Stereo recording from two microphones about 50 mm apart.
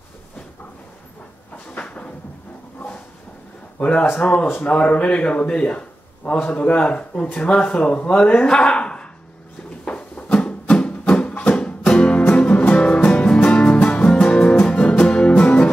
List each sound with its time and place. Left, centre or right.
1.8 s cupboard open or close: left
3.8 s a man's voice: left
10.1 s music: left
10.4 s a sound: left
11.2 s music: left
13.1 s music: centre
13.7 s music: left